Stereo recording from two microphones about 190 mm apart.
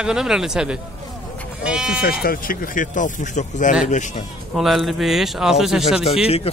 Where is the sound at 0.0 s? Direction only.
5° right (ahead or behind).